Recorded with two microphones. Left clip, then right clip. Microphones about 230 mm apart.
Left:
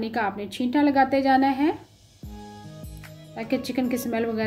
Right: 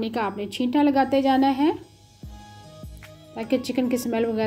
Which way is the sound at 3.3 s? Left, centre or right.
Centre.